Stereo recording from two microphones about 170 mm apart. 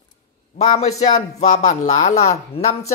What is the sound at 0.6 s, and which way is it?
Speech, 40° left (ahead or behind).